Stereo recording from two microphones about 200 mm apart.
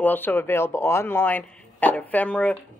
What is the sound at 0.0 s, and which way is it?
Speech, 10° left (ahead or behind).